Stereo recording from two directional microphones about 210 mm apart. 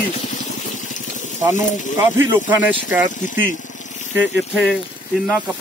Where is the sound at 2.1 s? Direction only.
35° left (ahead or behind).